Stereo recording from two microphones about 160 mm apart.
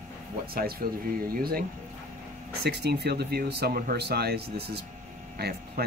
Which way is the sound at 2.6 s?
90° right.